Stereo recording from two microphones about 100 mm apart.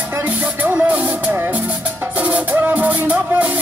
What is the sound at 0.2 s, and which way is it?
Music, 15° right (ahead or behind).